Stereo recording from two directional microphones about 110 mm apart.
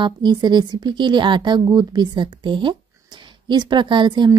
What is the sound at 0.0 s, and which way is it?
A woman's voice, 45° right (ahead or behind).